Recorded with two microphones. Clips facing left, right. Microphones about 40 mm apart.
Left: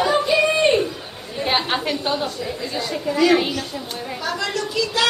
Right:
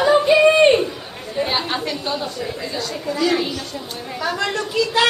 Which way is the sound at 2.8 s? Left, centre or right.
Centre.